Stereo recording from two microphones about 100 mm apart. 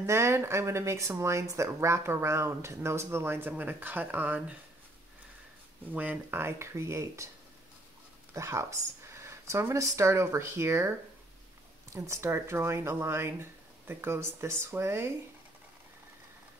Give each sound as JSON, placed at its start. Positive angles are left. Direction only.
{"t": 0.0, "sound": "speech", "side_deg": -25}
{"t": 5.9, "sound": "speech", "side_deg": -20}
{"t": 8.4, "sound": "speech", "side_deg": -30}